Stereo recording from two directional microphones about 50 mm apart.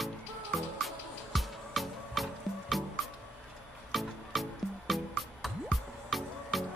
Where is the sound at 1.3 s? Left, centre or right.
Centre.